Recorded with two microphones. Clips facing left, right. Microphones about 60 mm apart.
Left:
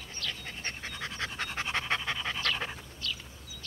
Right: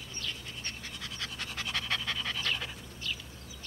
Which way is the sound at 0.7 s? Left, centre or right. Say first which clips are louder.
Left 6 dB; left.